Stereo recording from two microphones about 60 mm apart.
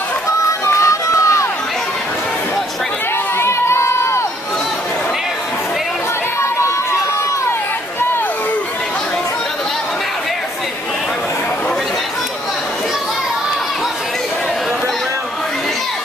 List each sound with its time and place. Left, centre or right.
0.5 s music: left
3.3 s crowd: left